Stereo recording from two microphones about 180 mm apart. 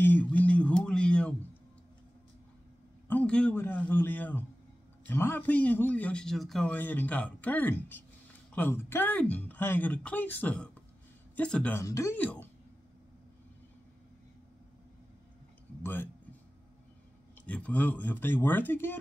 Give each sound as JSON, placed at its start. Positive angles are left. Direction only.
{"t": 0.0, "sound": "a sound", "side_deg": 10}
{"t": 3.1, "sound": "speech", "side_deg": 5}
{"t": 15.8, "sound": "speech", "side_deg": 10}
{"t": 17.5, "sound": "speech", "side_deg": 10}